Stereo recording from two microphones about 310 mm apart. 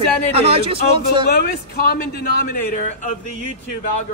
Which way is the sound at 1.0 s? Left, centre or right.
Left.